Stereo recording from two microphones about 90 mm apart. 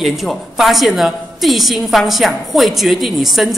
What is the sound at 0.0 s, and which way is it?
A woman's voice, centre (ahead or behind).